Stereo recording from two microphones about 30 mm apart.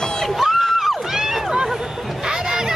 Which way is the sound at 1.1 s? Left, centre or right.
Centre.